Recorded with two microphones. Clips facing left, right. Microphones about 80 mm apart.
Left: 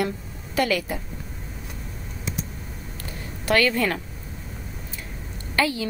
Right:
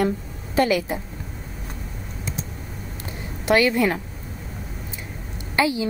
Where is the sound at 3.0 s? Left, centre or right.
Centre.